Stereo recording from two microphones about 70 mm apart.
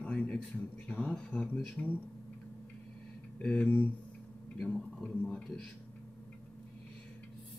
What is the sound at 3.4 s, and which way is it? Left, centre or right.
Speech, centre.